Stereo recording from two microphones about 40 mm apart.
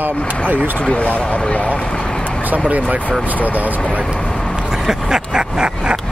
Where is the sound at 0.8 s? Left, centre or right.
Left.